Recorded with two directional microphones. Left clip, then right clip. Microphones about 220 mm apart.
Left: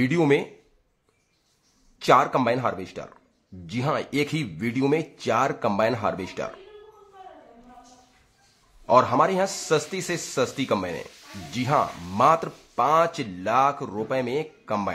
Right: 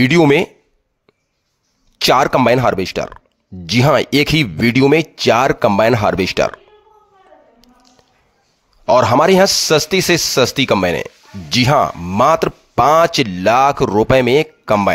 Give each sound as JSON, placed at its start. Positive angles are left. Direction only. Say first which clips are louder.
{"t": 0.0, "sound": "speech", "louder": "right 10 dB", "side_deg": -45}
{"t": 2.0, "sound": "speech", "louder": "right 7 dB", "side_deg": -45}
{"t": 8.8, "sound": "speech", "louder": "right 8 dB", "side_deg": -45}